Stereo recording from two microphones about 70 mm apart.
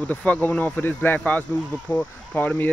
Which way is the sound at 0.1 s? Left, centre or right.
Left.